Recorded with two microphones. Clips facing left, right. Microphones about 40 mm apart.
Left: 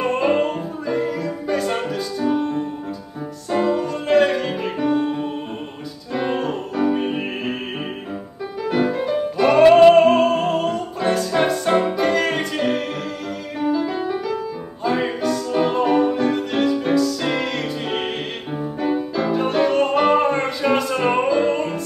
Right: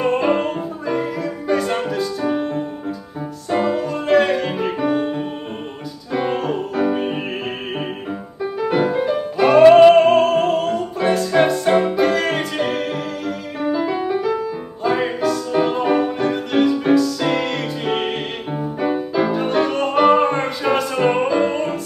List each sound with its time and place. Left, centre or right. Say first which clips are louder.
0.0 s music: right 1 dB; centre
2.2 s music: even; centre